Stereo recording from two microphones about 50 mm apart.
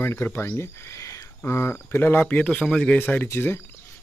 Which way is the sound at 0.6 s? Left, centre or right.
Left.